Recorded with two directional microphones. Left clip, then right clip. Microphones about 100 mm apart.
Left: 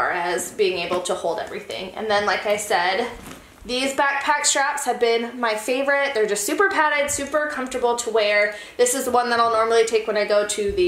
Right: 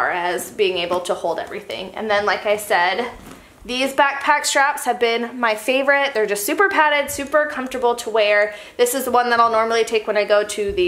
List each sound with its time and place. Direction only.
0.1 s a woman's voice: 35° right (ahead or behind)